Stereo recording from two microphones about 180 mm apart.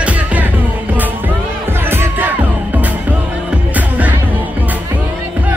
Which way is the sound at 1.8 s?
10° right (ahead or behind).